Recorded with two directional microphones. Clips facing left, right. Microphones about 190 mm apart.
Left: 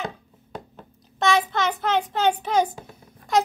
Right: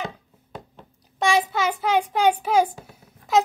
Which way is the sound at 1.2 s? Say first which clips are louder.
Even; 10° right (ahead or behind).